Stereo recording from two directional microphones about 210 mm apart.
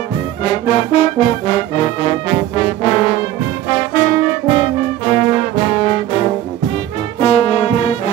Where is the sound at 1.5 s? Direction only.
30° left (ahead or behind).